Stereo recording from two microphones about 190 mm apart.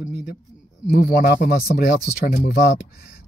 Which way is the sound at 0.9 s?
55° left (ahead or behind).